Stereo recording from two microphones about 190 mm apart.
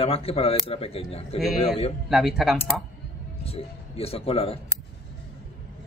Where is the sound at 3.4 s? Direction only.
30° left (ahead or behind).